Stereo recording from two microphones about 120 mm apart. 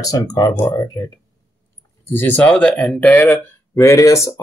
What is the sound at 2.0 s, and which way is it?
Speech, 15° left (ahead or behind).